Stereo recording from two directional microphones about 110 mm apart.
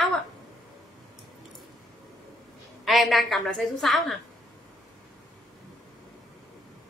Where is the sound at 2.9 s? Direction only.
Centre (ahead or behind).